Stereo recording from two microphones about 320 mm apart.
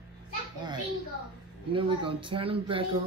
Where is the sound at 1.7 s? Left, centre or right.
Centre.